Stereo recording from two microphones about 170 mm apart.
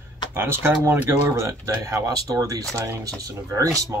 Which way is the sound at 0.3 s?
15° right (ahead or behind).